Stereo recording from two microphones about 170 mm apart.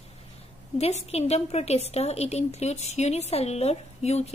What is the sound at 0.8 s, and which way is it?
A woman's voice, 35° left (ahead or behind).